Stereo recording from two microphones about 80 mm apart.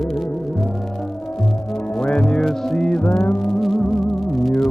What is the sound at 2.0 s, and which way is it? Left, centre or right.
Music, centre.